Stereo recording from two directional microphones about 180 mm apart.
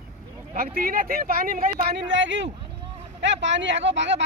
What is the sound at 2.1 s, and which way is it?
Speech, 90° right.